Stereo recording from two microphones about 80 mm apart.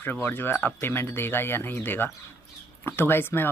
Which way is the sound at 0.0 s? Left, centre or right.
Left.